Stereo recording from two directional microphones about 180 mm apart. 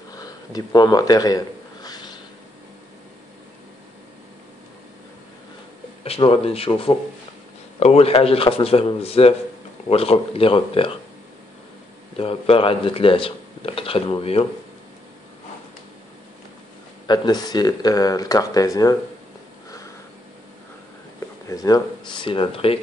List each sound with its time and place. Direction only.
0.1 s a sound: 20° left (ahead or behind)
6.0 s speech: 30° left (ahead or behind)
12.2 s speech: 30° left (ahead or behind)
17.1 s speech: 20° left (ahead or behind)
21.5 s speech: 20° left (ahead or behind)